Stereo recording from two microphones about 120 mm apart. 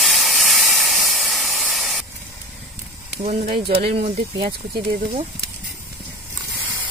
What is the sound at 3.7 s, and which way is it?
Speech, 55° right (ahead or behind).